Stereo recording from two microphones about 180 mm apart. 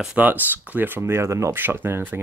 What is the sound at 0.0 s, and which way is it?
Speech, 10° right (ahead or behind).